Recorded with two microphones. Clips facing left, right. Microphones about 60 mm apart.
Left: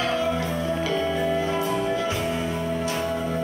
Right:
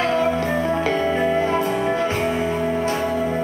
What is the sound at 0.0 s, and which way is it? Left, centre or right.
Music, right.